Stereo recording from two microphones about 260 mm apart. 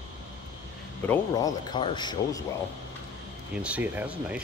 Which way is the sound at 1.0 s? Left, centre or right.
Centre.